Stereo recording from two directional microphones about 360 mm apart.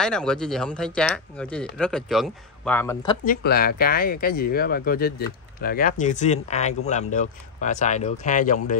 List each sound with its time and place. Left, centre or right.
0.0 s speech: centre
3.3 s speech: left